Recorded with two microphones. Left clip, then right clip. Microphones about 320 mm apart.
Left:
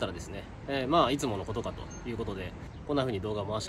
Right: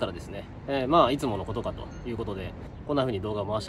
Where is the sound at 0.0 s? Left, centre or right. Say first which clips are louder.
Right 3 dB; centre.